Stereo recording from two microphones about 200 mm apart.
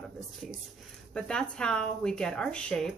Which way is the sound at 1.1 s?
5° left (ahead or behind).